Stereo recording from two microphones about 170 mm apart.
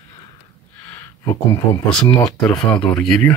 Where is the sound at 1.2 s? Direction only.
20° left (ahead or behind).